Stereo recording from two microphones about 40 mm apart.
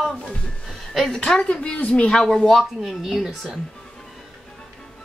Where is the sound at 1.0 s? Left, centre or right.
Centre.